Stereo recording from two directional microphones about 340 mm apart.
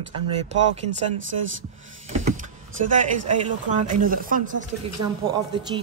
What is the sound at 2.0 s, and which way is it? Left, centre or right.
Power windows, right.